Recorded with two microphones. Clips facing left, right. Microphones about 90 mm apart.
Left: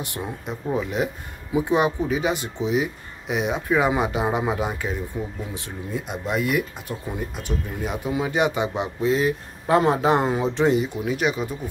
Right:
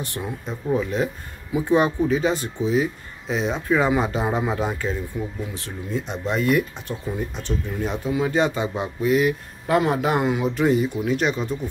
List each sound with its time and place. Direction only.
0.0 s speech: 15° left (ahead or behind)
5.1 s a man's voice: 30° left (ahead or behind)
5.5 s a man's voice: 15° left (ahead or behind)
11.1 s speech: 10° left (ahead or behind)